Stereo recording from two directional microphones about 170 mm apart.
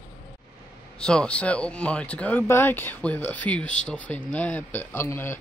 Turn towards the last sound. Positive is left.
turn(degrees=15)  # may be behind; listen again after turning